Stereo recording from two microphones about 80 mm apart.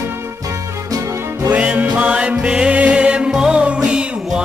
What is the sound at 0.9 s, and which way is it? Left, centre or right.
Music, right.